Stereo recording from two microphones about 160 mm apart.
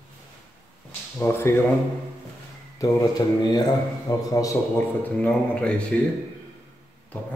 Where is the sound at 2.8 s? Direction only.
20° left (ahead or behind).